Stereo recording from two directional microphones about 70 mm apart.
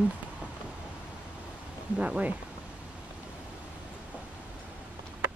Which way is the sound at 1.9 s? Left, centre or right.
Centre.